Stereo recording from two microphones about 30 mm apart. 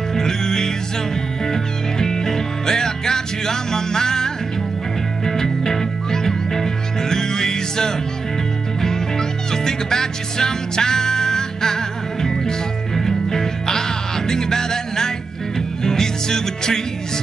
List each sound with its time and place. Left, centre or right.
0.1 s music: centre
9.5 s music: centre